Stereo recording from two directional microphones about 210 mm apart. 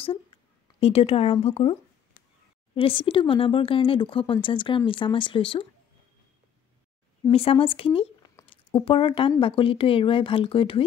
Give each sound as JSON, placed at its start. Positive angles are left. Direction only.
{"t": 0.7, "sound": "speech", "side_deg": 30}
{"t": 7.2, "sound": "speech", "side_deg": 25}